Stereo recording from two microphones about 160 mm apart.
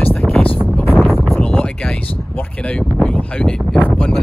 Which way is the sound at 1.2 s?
5° left (ahead or behind).